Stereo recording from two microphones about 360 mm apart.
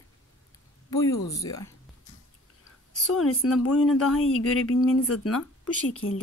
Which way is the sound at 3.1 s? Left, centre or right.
Left.